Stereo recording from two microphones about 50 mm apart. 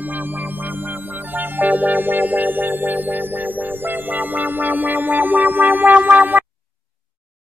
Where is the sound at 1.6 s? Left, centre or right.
Right.